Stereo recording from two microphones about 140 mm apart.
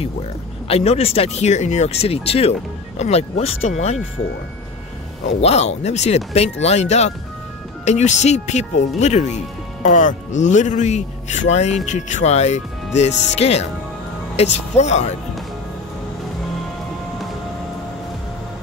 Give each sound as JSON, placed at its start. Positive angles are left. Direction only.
{"t": 0.7, "sound": "speech", "side_deg": 45}
{"t": 5.2, "sound": "speech", "side_deg": 50}